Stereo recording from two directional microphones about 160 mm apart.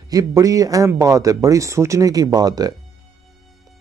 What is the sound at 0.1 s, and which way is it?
Speech, 20° right (ahead or behind).